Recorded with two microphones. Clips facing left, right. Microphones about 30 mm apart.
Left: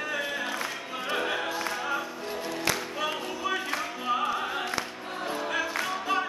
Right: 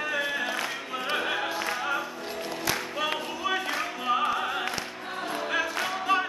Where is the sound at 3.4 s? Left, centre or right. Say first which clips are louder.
Right 1 dB; centre.